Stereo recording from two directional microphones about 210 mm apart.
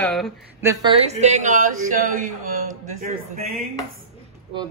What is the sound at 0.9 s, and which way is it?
A man's voice, 30° right (ahead or behind).